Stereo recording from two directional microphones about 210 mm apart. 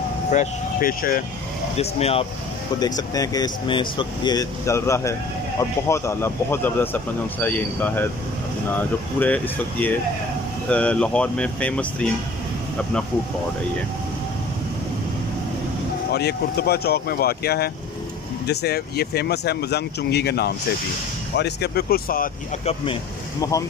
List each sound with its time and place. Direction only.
0.3 s speech: 40° left (ahead or behind)
1.8 s speech: 30° left (ahead or behind)
2.8 s speech: 20° left (ahead or behind)
16.1 s speech: 50° left (ahead or behind)
23.4 s speech: 15° left (ahead or behind)